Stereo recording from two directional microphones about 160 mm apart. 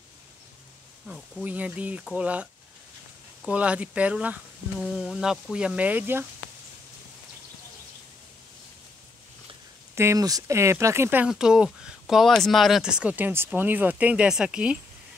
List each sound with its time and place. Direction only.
1.0 s speech: 5° right (ahead or behind)
9.9 s speech: 20° right (ahead or behind)